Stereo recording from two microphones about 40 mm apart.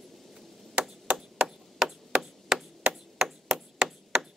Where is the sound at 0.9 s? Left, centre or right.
Centre.